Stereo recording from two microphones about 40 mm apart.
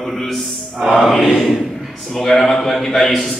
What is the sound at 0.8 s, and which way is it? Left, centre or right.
A man's voice, centre.